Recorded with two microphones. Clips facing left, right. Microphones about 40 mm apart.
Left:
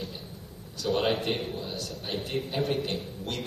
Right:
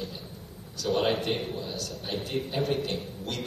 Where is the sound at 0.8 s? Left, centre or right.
Centre.